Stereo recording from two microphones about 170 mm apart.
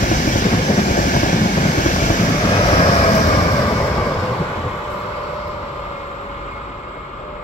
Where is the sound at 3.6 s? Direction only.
20° left (ahead or behind).